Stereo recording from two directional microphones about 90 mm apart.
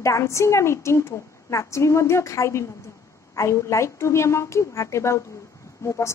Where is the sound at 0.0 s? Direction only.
35° left (ahead or behind).